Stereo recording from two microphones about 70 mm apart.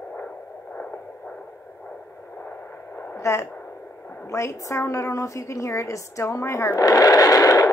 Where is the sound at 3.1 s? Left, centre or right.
Left.